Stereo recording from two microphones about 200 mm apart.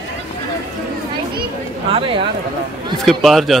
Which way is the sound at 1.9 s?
25° right (ahead or behind).